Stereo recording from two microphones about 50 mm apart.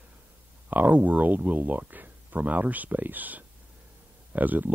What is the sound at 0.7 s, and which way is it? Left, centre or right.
Speech, right.